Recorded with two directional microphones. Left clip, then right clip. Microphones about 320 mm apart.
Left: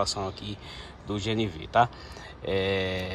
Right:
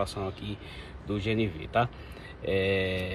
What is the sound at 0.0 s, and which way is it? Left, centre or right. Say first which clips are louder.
Speech: left 3 dB; centre.